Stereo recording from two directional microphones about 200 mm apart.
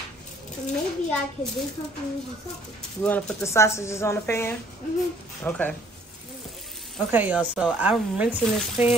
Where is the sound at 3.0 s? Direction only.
5° left (ahead or behind).